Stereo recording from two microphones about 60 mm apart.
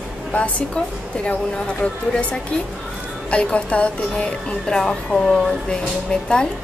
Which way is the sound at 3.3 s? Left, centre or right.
Left.